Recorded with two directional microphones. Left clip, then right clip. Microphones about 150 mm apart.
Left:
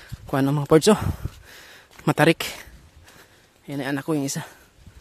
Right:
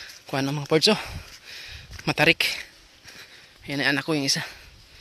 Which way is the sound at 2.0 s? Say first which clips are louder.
Left 1 dB; 45° left (ahead or behind).